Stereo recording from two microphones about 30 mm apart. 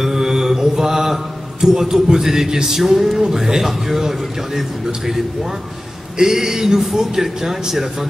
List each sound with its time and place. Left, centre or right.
0.0 s mantra: centre
2.0 s a man's voice: centre